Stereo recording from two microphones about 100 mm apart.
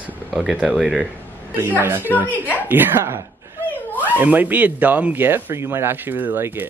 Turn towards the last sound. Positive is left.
turn(degrees=-20)  # may be behind; listen again after turning